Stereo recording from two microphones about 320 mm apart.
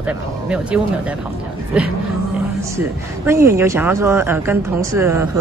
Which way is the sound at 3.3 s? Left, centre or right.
Centre.